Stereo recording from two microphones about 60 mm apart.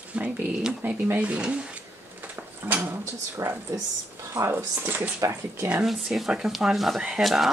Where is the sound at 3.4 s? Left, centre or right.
Right.